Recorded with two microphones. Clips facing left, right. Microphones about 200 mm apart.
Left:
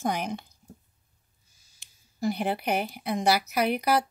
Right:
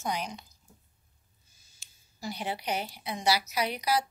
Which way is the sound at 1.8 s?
55° left (ahead or behind).